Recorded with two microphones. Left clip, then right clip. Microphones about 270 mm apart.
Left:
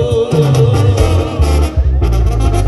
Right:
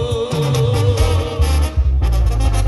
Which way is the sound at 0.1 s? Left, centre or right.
Centre.